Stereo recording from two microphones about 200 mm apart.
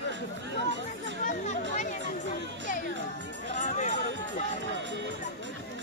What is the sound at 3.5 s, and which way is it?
Music, 35° left (ahead or behind).